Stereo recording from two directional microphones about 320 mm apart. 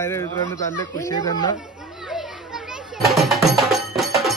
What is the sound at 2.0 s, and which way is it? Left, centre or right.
Children playing, centre.